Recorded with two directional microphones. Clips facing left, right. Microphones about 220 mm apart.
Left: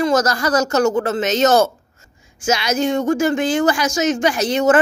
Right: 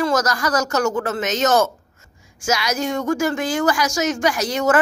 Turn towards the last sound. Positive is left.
turn(degrees=25)  # may be behind; listen again after turning